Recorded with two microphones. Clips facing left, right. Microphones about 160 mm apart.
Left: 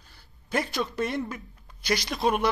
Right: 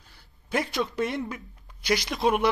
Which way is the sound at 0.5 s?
20° right (ahead or behind).